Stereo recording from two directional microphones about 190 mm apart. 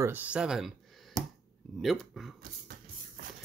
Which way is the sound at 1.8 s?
Centre (ahead or behind).